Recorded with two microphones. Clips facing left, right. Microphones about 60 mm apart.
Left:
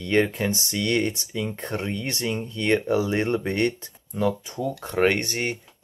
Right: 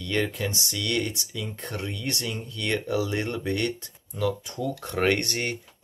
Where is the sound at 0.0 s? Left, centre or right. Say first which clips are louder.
Left 5 dB; left.